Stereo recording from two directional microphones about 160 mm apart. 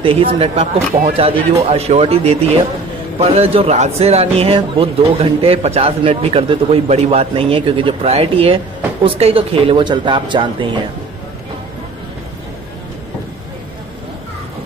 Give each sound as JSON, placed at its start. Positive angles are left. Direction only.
{"t": 0.0, "sound": "speech", "side_deg": -35}